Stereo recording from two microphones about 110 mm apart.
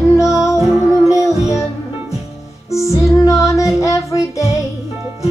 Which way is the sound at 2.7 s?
25° left (ahead or behind).